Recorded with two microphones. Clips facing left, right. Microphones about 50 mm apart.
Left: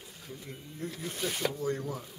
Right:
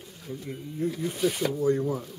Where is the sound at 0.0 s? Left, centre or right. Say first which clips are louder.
Right 7 dB; centre.